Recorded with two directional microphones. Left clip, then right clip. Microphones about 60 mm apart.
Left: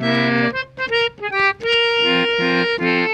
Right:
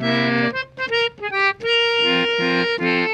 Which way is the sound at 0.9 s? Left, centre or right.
Right.